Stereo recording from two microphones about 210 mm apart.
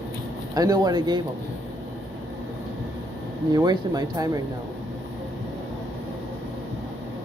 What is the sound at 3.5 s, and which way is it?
Speech, 20° right (ahead or behind).